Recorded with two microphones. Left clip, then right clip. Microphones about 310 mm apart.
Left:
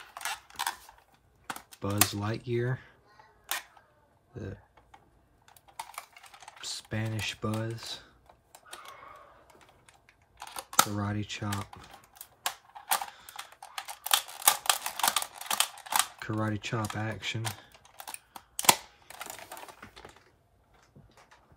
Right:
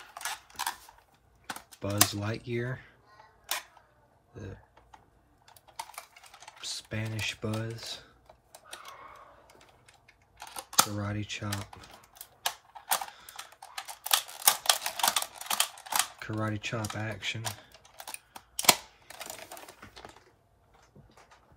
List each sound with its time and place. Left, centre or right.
0.1 s typewriter: centre
1.5 s speech: centre
4.3 s speech: centre
6.3 s speech: centre
10.4 s speech: centre
12.9 s camera: centre